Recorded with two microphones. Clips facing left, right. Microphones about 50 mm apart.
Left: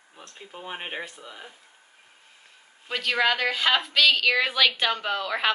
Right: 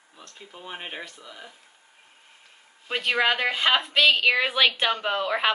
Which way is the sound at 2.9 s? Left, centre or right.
Centre.